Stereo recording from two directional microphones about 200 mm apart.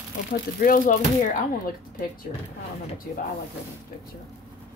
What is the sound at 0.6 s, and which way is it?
Speech, 45° left (ahead or behind).